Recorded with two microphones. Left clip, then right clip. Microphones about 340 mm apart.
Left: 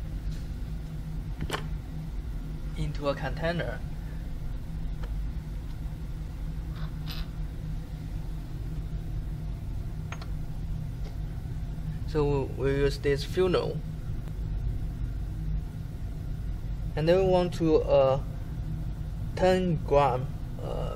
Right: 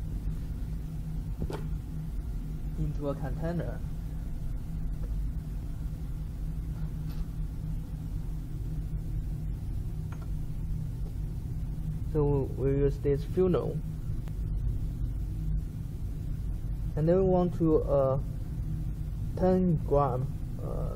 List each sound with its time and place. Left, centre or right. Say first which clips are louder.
3.0 s speech: left 6 dB; left
12.1 s speech: left 2 dB; left
16.9 s speech: left 3 dB; left
19.3 s speech: left 3 dB; left
20.6 s vehicle: left 4 dB; left